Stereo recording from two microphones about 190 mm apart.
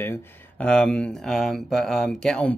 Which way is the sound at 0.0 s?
10° left (ahead or behind).